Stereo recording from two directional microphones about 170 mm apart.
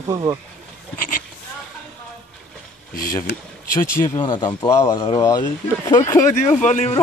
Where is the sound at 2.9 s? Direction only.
55° left (ahead or behind).